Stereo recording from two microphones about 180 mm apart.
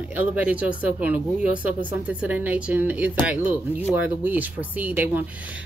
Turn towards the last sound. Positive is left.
turn(degrees=-10)  # may be behind; listen again after turning